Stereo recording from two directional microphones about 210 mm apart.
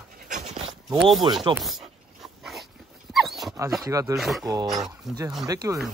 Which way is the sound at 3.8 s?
15° right (ahead or behind).